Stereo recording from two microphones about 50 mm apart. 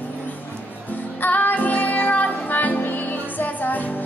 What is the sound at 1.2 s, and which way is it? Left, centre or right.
Music, left.